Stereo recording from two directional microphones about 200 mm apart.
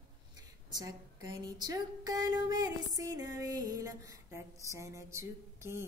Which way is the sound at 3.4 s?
20° right (ahead or behind).